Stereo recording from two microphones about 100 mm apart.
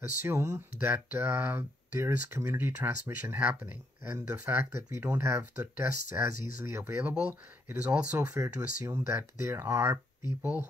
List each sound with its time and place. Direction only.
0.2 s speech: 30° right (ahead or behind)
0.7 s speech: 20° right (ahead or behind)
4.9 s speech: 25° right (ahead or behind)
8.3 s speech: 30° right (ahead or behind)